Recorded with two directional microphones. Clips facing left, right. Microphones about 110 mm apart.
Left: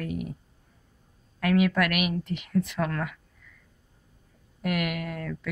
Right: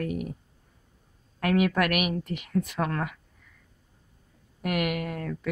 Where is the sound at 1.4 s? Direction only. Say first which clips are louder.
Even; 40° right (ahead or behind).